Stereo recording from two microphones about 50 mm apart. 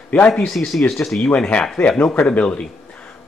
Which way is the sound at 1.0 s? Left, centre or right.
Left.